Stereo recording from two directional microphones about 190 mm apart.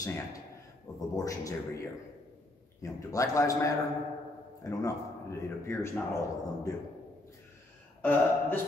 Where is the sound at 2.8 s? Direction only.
15° left (ahead or behind).